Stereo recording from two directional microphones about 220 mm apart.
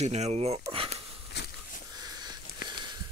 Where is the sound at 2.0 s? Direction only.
15° right (ahead or behind).